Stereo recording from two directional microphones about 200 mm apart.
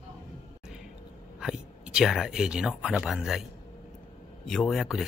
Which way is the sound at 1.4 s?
Centre (ahead or behind).